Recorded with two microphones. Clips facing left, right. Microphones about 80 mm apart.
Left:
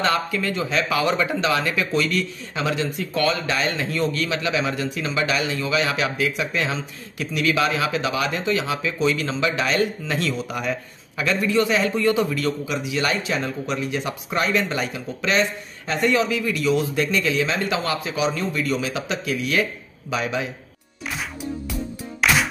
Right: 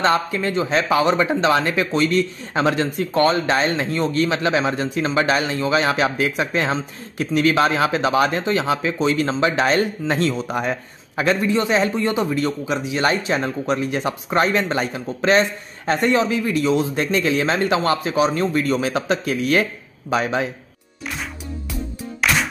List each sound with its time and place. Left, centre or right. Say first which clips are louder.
0.0 s speech: right 3 dB; right
22.2 s music: even; centre